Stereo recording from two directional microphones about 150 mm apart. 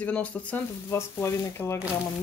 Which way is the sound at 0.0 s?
10° left (ahead or behind).